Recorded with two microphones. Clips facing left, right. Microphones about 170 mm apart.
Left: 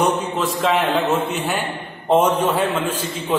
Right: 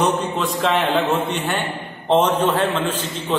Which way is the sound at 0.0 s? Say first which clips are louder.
Even; 5° left (ahead or behind).